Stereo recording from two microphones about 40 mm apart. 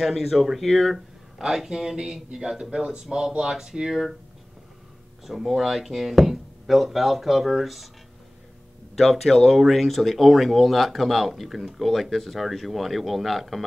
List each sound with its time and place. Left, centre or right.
0.0 s speech: centre
1.4 s speech: centre
3.9 s speech: centre
5.2 s speech: centre
8.9 s speech: centre